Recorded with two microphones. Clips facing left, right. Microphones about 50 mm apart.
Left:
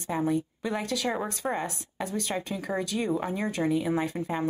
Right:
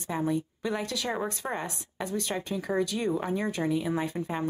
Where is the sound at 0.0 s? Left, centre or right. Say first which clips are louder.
Left 2 dB; centre.